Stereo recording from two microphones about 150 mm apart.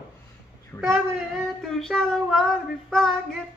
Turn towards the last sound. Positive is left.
turn(degrees=5)  # may be behind; listen again after turning